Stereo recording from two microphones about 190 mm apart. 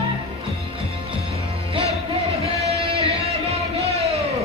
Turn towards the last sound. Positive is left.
turn(degrees=-30)  # may be behind; listen again after turning